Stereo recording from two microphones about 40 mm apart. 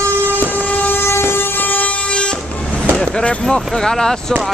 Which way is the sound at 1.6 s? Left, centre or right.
Left.